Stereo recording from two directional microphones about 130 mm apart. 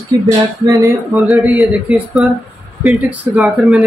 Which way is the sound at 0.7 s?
25° right (ahead or behind).